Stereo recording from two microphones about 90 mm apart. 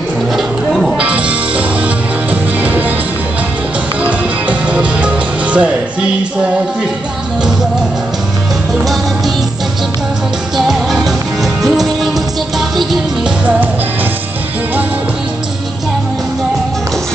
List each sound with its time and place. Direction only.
0.4 s a sound: centre (ahead or behind)
1.0 s music: 15° right (ahead or behind)
4.0 s music: 15° right (ahead or behind)
10.6 s music: centre (ahead or behind)